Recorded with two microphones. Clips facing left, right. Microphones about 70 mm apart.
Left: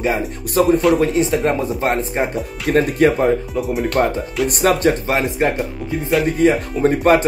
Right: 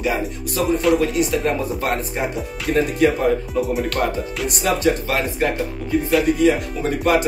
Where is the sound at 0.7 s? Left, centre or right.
Centre.